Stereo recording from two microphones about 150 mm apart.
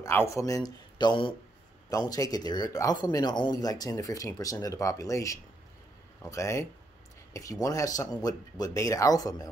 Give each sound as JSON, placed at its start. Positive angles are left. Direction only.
{"t": 0.0, "sound": "speech", "side_deg": 15}
{"t": 7.6, "sound": "speech", "side_deg": 20}